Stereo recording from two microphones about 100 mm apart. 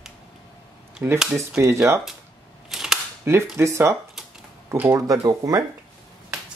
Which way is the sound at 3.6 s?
25° right (ahead or behind).